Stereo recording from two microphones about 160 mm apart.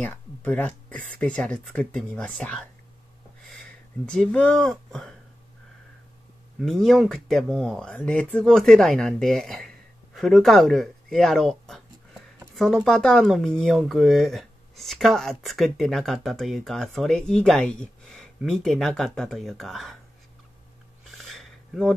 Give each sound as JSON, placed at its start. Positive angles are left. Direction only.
{"t": 0.0, "sound": "speech", "side_deg": 10}
{"t": 6.6, "sound": "speech", "side_deg": 0}
{"t": 21.2, "sound": "a sound", "side_deg": 0}